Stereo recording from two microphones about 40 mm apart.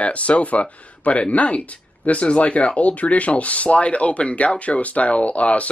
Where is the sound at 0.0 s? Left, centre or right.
Left.